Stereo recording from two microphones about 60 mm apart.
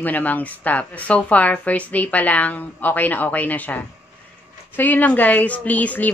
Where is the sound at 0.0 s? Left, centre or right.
Left.